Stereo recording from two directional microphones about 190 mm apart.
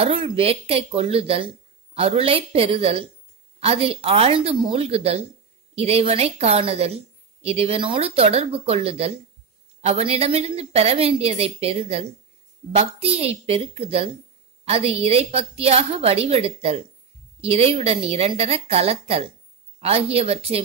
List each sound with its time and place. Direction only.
0.0 s a woman's voice: 30° right (ahead or behind)